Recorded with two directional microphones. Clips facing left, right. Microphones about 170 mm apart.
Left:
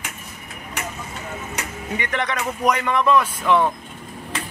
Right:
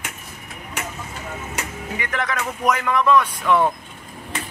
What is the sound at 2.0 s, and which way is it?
Speech, centre (ahead or behind).